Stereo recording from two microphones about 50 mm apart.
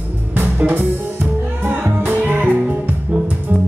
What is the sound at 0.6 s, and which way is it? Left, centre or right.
Music, right.